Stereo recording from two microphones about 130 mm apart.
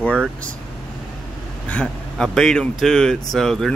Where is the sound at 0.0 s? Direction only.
10° left (ahead or behind).